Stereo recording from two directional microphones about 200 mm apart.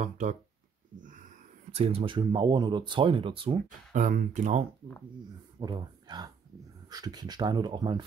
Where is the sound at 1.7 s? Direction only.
30° right (ahead or behind).